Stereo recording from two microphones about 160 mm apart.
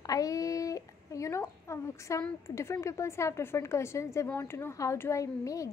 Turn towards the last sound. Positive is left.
turn(degrees=20)  # may be behind; listen again after turning